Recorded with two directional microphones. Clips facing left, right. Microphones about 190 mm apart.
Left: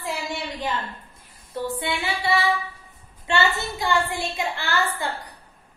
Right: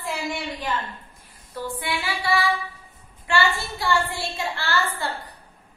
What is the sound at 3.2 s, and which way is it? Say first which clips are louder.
A woman's voice: even; 20° left (ahead or behind).